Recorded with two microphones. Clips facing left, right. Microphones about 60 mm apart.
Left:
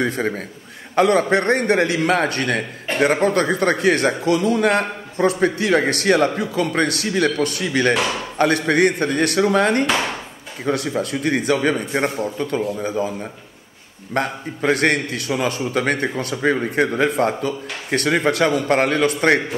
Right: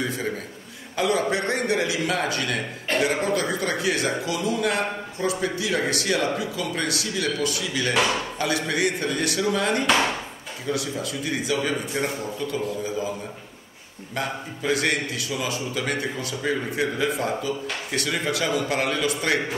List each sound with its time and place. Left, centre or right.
0.0 s a man's voice: left
7.9 s speech: centre
8.4 s a man's voice: left
14.1 s a man's voice: left